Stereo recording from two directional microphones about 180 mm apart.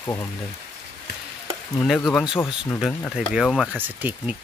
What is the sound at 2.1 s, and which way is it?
Speech, 5° right (ahead or behind).